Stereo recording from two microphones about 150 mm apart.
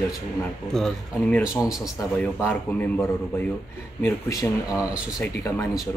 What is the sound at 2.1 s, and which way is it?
A man's voice, 15° left (ahead or behind).